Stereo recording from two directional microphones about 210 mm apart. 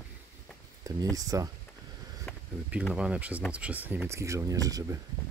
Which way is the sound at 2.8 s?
5° right (ahead or behind).